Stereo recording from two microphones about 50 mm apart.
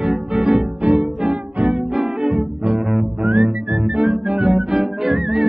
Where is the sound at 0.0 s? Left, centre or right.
Centre.